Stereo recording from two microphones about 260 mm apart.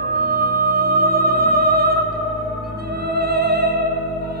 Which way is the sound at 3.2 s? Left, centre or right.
Right.